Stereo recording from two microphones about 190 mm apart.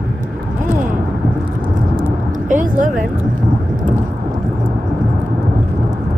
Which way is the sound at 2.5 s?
40° right (ahead or behind).